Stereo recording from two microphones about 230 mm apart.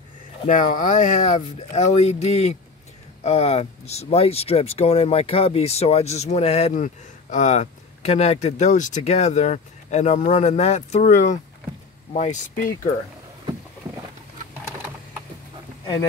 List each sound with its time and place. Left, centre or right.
0.5 s speech: left